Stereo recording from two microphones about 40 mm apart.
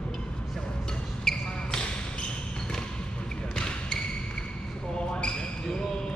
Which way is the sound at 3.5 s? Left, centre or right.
Left.